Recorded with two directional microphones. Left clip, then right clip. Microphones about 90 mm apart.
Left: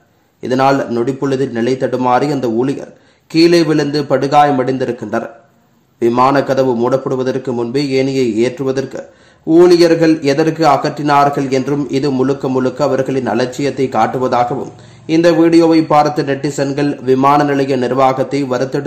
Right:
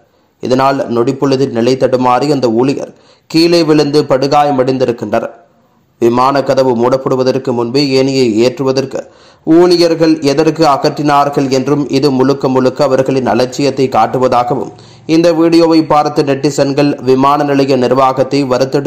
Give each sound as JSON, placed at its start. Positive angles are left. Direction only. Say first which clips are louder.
{"t": 0.4, "sound": "a man's voice", "louder": "right 2 dB", "side_deg": -25}